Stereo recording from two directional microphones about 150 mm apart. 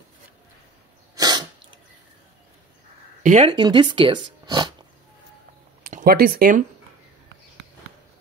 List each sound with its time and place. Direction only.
1.1 s sneeze: 25° right (ahead or behind)
3.2 s a sound: 55° right (ahead or behind)
3.4 s speech: 35° right (ahead or behind)
5.9 s speech: 75° right (ahead or behind)